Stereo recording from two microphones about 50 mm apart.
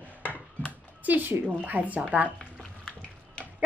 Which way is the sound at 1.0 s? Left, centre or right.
Right.